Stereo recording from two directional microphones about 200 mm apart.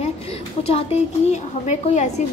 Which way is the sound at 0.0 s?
30° left (ahead or behind).